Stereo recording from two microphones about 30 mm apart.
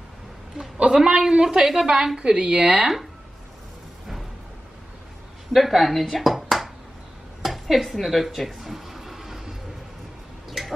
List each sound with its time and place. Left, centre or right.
0.9 s a man's voice: centre; by 2.9 s right
5.5 s a woman's voice: centre
8.5 s a sound: centre